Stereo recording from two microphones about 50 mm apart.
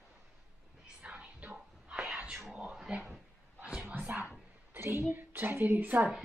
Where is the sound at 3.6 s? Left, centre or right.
Right.